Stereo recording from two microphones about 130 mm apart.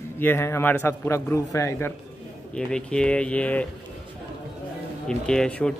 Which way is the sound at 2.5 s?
5° left (ahead or behind).